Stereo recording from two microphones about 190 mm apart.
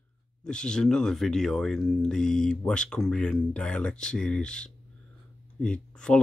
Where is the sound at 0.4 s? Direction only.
5° left (ahead or behind).